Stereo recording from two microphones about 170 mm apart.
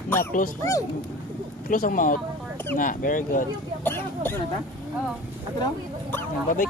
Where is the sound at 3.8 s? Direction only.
15° left (ahead or behind).